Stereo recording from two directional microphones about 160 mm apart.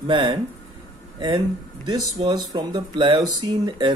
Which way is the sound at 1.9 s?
25° right (ahead or behind).